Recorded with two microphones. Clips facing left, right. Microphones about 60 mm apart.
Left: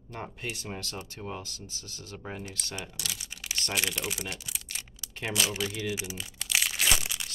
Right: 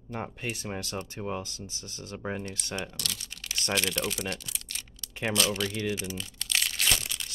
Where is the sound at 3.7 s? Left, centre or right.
Centre.